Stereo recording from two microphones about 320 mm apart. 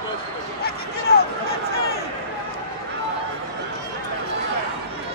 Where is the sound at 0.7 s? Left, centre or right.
Left.